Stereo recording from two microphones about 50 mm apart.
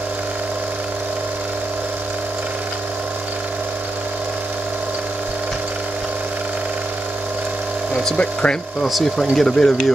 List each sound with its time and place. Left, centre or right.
8.2 s speech: left
8.8 s speech: centre